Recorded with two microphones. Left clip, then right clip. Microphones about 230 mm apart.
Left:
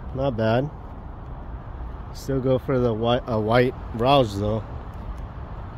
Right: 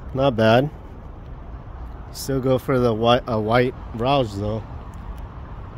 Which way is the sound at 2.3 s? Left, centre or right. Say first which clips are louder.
Right 2 dB; right.